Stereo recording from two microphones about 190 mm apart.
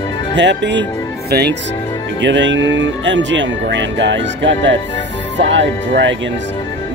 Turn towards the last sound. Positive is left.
turn(degrees=-70)  # may be behind; listen again after turning